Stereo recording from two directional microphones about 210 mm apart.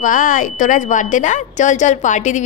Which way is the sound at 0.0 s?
40° left (ahead or behind).